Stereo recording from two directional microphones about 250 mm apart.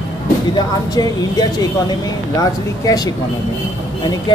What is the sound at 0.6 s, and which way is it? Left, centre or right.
Speech, centre.